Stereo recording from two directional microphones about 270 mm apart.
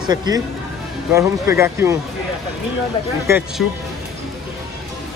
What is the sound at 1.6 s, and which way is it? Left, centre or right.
Speech, centre.